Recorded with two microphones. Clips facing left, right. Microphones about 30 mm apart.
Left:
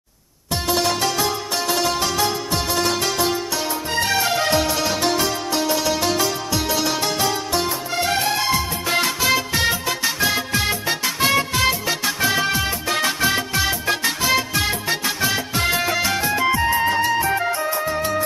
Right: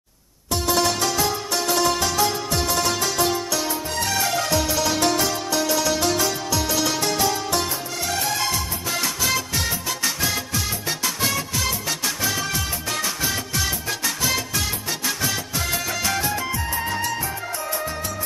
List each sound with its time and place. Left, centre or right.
3.9 s music: left
7.9 s music: left
8.8 s music: left
9.2 s music: left
10.5 s music: left
10.9 s music: left
11.8 s music: left
12.2 s music: left
14.6 s music: left
15.0 s music: left
16.0 s music: centre
16.4 s music: left
17.2 s music: left
17.6 s music: centre